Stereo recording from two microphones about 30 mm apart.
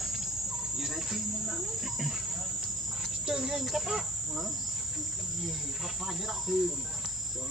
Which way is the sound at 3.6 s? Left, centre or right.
Centre.